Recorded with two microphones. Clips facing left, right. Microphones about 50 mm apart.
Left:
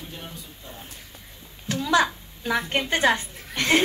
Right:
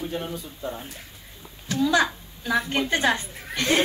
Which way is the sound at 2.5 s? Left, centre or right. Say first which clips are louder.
Right 1 dB; left.